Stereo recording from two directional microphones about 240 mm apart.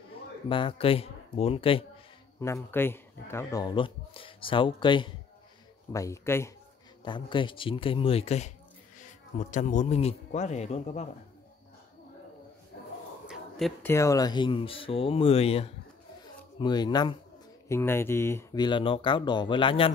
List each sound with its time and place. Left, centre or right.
0.5 s speech: left
2.4 s speech: centre; by 11.1 s left
13.3 s a sound: centre
13.9 s speech: centre